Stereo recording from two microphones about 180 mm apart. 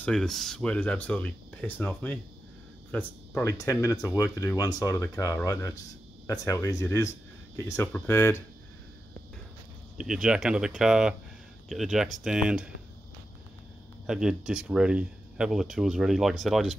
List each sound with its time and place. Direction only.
0.0 s speech: 5° left (ahead or behind)
9.9 s speech: 5° right (ahead or behind)
14.0 s speech: 5° right (ahead or behind)